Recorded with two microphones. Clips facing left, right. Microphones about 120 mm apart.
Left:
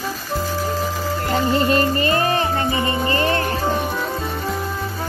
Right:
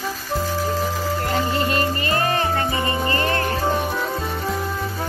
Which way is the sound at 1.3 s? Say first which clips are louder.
Left 6 dB; 30° left (ahead or behind).